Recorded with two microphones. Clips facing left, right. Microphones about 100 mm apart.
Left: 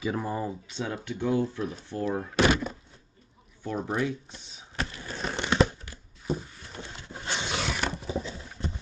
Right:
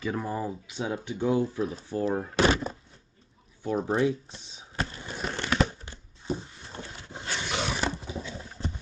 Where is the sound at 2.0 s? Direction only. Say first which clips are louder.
Even; 25° right (ahead or behind).